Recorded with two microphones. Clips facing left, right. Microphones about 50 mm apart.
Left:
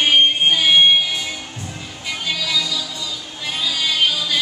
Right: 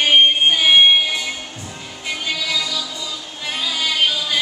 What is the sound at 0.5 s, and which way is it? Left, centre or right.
Music, centre.